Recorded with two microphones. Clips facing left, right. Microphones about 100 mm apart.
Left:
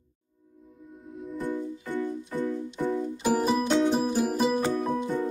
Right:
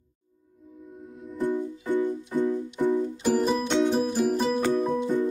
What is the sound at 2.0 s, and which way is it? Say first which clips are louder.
Music: right 4 dB; 15° right (ahead or behind).